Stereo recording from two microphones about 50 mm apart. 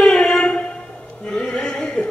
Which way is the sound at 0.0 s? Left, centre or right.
Centre.